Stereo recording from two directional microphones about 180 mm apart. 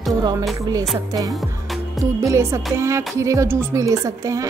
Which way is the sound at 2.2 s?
15° right (ahead or behind).